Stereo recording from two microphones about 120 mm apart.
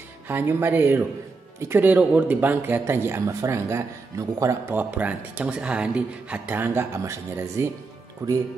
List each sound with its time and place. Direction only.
0.3 s speech: 20° right (ahead or behind)